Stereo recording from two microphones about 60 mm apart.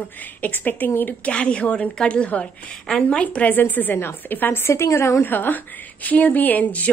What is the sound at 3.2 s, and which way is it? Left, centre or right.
A woman's voice, left.